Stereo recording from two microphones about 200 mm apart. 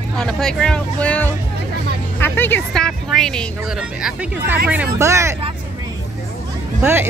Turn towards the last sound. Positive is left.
turn(degrees=-10)  # may be behind; listen again after turning